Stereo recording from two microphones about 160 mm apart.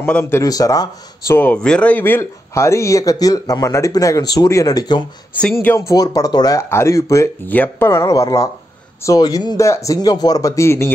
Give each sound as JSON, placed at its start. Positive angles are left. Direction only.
{"t": 0.0, "sound": "speech", "side_deg": 10}
{"t": 5.4, "sound": "speech", "side_deg": 10}